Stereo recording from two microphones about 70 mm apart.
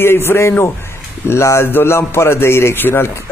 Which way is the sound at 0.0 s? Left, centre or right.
Left.